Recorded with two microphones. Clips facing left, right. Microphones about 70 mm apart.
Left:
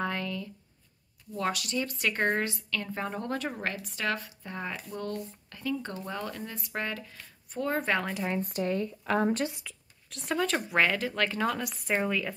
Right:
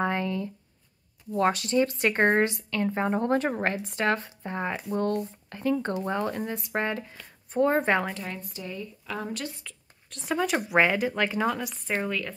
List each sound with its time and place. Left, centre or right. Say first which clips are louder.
0.0 s a sound: right 5 dB; right
1.3 s a woman's voice: right 7 dB; right
8.4 s speech: left 8 dB; left
9.6 s speech: even; centre
11.6 s a woman's voice: even; centre